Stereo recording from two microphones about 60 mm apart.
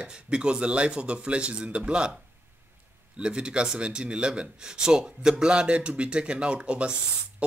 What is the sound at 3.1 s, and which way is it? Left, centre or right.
Speech, centre.